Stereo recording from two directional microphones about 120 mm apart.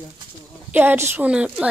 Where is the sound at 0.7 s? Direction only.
15° right (ahead or behind).